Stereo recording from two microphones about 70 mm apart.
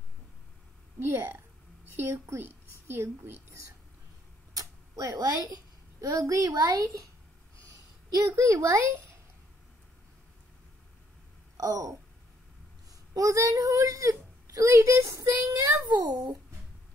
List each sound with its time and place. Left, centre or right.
0.9 s a woman's voice: right
4.6 s a woman's voice: right
6.5 s speech: right
7.6 s a sound: right
8.4 s a child's voice: right
11.5 s speech: right
13.1 s a woman's voice: right